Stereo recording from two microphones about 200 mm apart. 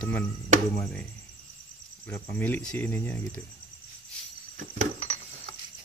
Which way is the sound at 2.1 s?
10° left (ahead or behind).